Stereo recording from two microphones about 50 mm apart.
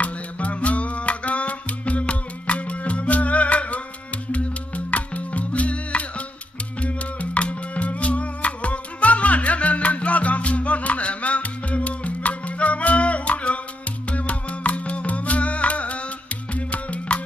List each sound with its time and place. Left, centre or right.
0.0 s music: left